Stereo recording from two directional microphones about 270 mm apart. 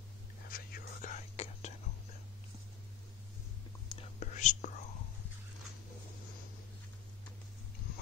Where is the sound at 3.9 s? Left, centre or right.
Centre.